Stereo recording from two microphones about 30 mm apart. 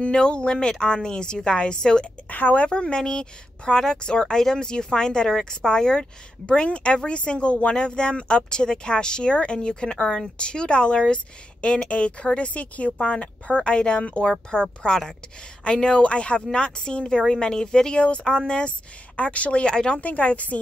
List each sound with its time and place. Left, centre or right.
0.0 s speech: left
2.2 s speech: left
2.7 s speech: left
6.4 s speech: left
10.3 s speech: left
11.9 s speech: left
17.9 s speech: left
19.1 s speech: left
19.6 s speech: left
20.0 s a woman's voice: left